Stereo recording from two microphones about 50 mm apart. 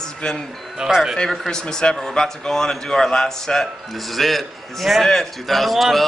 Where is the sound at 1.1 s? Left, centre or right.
Centre.